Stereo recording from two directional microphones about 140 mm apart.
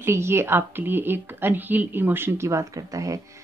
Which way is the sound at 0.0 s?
20° right (ahead or behind).